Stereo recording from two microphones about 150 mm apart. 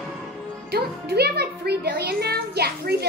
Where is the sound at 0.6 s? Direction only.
90° right.